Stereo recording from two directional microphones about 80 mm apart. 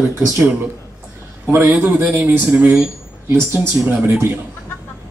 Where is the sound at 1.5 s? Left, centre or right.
Right.